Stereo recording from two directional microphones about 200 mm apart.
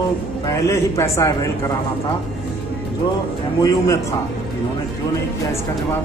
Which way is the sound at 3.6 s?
15° left (ahead or behind).